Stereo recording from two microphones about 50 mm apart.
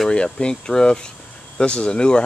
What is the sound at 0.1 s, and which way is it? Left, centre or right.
Speech, centre.